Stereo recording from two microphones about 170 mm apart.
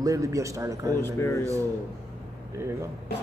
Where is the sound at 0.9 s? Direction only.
15° left (ahead or behind).